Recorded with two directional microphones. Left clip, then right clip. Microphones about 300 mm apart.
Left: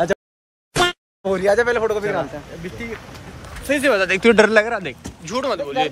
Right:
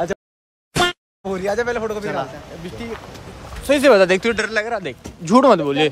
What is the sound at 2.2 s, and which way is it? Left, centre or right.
Speech, centre.